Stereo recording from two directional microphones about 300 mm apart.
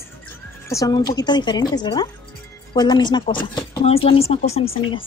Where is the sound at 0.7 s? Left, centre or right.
Centre.